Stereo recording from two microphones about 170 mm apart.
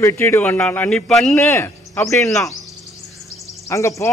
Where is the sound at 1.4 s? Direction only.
15° left (ahead or behind).